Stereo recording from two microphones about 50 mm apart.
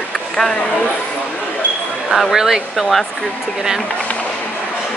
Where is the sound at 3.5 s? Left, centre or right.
Centre.